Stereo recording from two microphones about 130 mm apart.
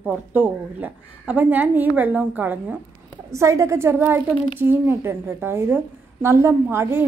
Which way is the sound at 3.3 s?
25° right (ahead or behind).